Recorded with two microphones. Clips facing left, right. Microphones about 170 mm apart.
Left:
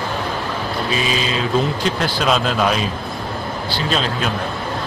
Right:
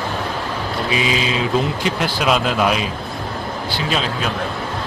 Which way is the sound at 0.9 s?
15° right (ahead or behind).